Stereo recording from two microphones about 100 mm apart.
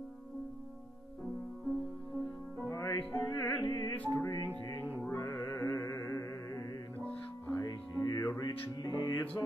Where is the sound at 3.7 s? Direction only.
45° left (ahead or behind).